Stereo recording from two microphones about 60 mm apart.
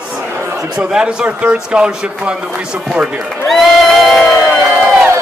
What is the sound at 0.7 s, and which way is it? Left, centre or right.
A man's voice, centre.